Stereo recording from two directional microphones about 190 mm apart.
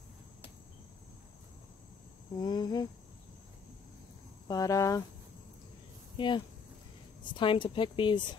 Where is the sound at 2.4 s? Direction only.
20° left (ahead or behind).